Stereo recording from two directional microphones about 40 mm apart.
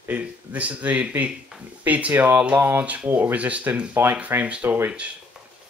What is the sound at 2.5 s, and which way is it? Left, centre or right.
Speech, right.